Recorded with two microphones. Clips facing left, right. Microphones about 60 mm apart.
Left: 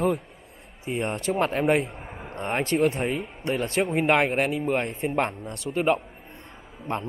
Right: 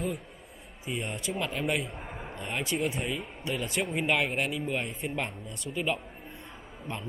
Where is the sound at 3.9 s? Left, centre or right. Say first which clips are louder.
Left 7 dB; left.